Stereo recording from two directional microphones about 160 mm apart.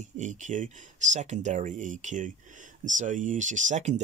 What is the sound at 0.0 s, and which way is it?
Speech, 50° right (ahead or behind).